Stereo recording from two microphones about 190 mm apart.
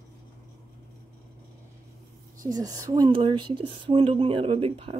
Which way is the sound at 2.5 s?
20° right (ahead or behind).